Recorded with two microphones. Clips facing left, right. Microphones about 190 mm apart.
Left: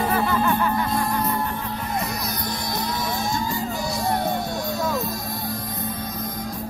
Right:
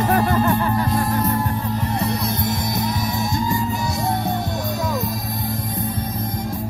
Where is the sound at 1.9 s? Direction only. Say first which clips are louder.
Right 3 dB; 30° right (ahead or behind).